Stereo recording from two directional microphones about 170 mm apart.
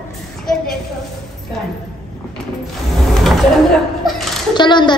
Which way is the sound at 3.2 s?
Centre (ahead or behind).